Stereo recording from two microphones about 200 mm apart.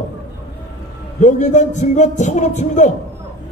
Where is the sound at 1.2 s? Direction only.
35° left (ahead or behind).